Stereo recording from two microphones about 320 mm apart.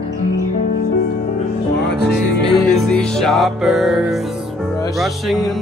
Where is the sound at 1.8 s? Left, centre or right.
Left.